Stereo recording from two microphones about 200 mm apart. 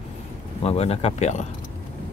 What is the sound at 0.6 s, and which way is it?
Speech, 30° left (ahead or behind).